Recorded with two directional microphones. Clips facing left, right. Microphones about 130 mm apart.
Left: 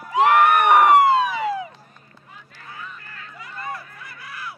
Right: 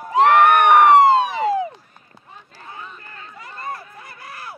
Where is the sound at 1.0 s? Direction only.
30° right (ahead or behind).